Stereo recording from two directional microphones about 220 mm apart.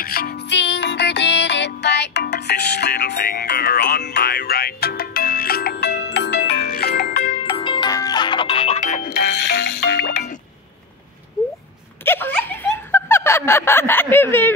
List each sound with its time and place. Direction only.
0.0 s music: 40° left (ahead or behind)
7.4 s music: 25° left (ahead or behind); by 10.1 s 45° left (ahead or behind)
12.0 s snicker: 10° left (ahead or behind)